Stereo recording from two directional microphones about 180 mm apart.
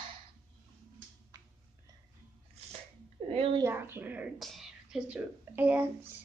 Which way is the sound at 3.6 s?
10° right (ahead or behind).